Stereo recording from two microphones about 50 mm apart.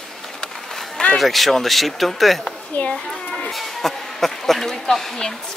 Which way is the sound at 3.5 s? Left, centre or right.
Centre.